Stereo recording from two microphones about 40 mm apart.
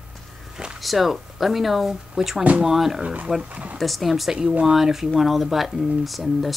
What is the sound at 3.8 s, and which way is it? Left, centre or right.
Speech, centre.